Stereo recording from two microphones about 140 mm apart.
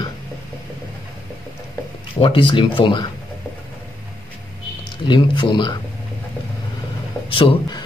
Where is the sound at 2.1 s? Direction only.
35° left (ahead or behind).